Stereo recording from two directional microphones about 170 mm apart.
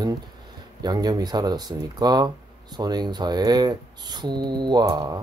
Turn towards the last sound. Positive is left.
turn(degrees=-20)  # may be behind; listen again after turning